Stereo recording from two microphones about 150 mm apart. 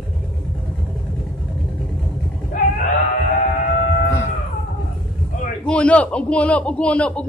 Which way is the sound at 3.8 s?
90° left.